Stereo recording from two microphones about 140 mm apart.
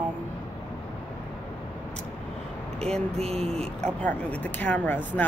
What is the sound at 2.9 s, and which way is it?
Speech, 45° right (ahead or behind).